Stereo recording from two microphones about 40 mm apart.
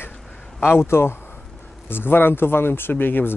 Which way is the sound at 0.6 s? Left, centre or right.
Left.